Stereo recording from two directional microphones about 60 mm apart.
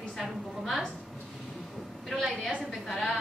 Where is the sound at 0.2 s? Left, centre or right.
Centre.